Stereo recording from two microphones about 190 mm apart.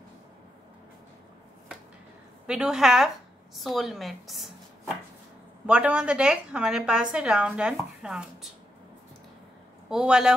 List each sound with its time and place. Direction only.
2.4 s a woman's voice: 5° right (ahead or behind)
3.5 s chopping: centre (ahead or behind)
5.7 s a woman's voice: 5° right (ahead or behind)
9.8 s a woman's voice: 5° right (ahead or behind)